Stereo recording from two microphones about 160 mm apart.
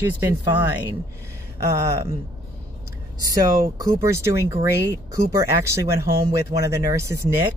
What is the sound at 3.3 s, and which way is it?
Speech, 20° right (ahead or behind).